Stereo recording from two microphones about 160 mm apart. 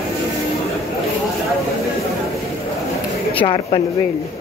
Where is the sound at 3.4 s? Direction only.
35° left (ahead or behind).